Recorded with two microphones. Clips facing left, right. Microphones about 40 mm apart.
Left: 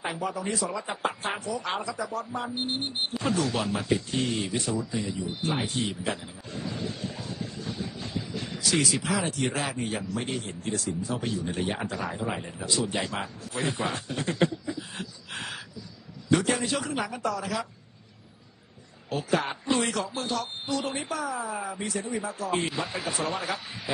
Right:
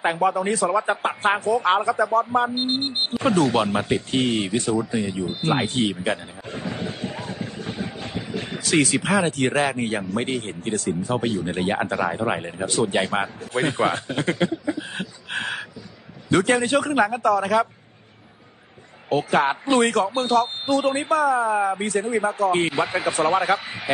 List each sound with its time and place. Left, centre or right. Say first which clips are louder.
0.0 s speech: right 10 dB; right
19.0 s speech: right 8 dB; right